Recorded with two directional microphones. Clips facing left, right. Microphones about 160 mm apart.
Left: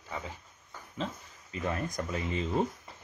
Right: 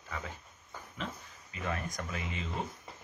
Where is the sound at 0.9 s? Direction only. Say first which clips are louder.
Left 5 dB; 30° left (ahead or behind).